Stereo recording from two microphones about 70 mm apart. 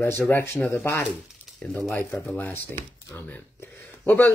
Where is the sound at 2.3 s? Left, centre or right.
Left.